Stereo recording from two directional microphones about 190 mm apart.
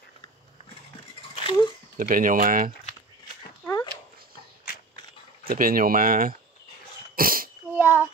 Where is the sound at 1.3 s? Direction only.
25° left (ahead or behind).